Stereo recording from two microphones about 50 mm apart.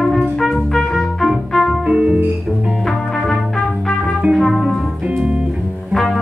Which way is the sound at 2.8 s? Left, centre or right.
Centre.